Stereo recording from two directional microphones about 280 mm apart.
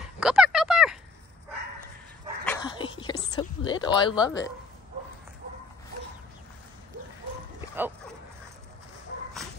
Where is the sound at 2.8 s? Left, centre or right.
Centre.